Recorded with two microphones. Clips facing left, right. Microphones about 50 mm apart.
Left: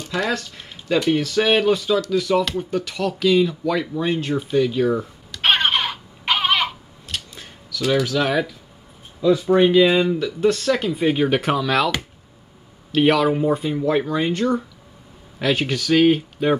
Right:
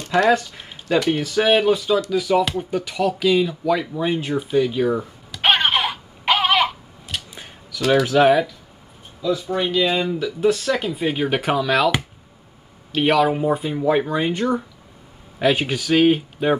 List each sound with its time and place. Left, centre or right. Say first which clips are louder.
0.3 s speech: right 7 dB; centre
4.4 s a sound: even; centre
7.9 s speech: right 6 dB; right
9.2 s speech: left 6 dB; left; by 16.5 s centre